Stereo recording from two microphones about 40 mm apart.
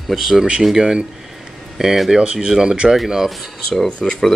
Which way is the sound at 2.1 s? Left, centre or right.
Right.